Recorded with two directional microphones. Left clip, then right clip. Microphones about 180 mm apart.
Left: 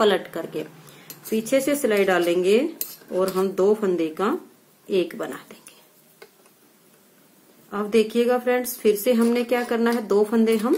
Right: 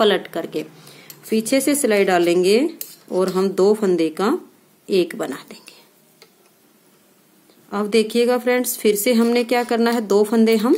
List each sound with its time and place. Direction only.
0.0 s speech: 30° right (ahead or behind)
7.7 s speech: 35° right (ahead or behind)